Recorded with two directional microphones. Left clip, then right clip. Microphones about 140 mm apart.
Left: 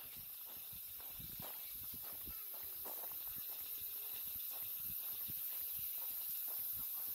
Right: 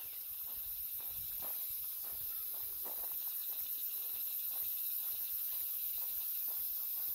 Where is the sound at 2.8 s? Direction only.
45° left (ahead or behind).